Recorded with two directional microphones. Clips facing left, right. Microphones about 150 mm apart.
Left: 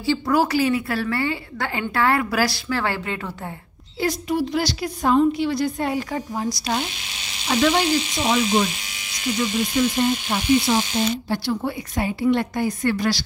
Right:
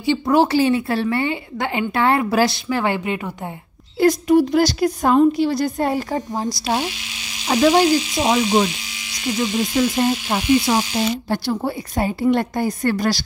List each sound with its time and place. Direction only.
0.0 s a woman's voice: 20° right (ahead or behind)
4.0 s a woman's voice: 45° right (ahead or behind)
9.9 s a woman's voice: 50° right (ahead or behind)
11.2 s a woman's voice: 40° right (ahead or behind)